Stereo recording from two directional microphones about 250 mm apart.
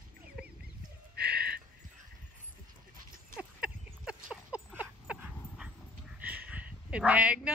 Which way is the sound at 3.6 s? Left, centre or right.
Centre.